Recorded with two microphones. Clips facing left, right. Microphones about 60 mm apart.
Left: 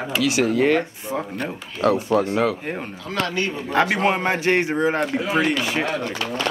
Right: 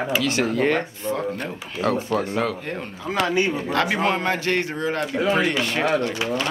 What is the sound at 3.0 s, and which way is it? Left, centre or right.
Speech, centre.